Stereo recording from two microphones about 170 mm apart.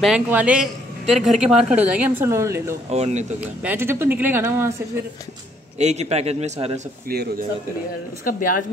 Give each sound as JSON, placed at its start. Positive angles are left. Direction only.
{"t": 0.0, "sound": "a man's voice", "side_deg": -5}
{"t": 2.9, "sound": "a man's voice", "side_deg": -40}
{"t": 3.6, "sound": "a man's voice", "side_deg": -15}
{"t": 5.8, "sound": "a man's voice", "side_deg": -40}
{"t": 7.1, "sound": "speech", "side_deg": -65}
{"t": 8.2, "sound": "speech", "side_deg": 55}